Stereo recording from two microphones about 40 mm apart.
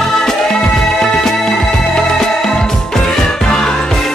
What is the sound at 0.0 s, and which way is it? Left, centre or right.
Music, centre.